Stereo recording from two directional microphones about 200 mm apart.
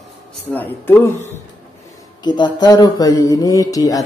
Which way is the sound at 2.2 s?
20° left (ahead or behind).